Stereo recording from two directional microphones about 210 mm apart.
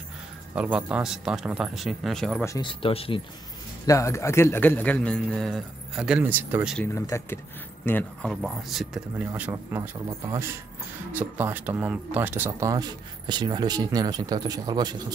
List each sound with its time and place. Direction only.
0.6 s speech: 5° right (ahead or behind)
2.4 s speech: 20° left (ahead or behind)
3.8 s speech: 15° left (ahead or behind); by 6.8 s 5° right (ahead or behind)
6.8 s speech: 15° left (ahead or behind); by 9.8 s 10° right (ahead or behind)
11.1 s speech: 10° right (ahead or behind)